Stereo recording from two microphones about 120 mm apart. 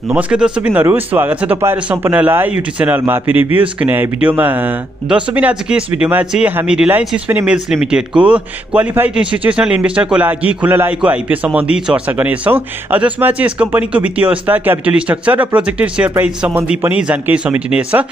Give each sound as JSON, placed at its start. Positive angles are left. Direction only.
{"t": 0.1, "sound": "speech", "side_deg": -10}